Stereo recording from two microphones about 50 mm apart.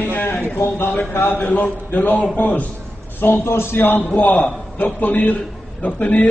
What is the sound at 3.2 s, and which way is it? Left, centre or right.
Speech, left.